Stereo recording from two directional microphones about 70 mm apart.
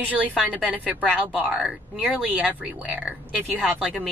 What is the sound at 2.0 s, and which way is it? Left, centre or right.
Speech, centre.